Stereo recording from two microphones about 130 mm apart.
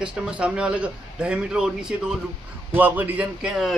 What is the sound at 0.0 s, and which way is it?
A man's voice, 5° right (ahead or behind).